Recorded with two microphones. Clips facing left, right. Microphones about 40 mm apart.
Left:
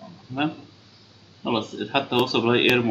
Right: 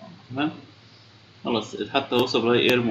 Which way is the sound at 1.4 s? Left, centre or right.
Centre.